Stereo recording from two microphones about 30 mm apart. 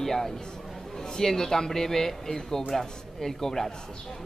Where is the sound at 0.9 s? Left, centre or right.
Left.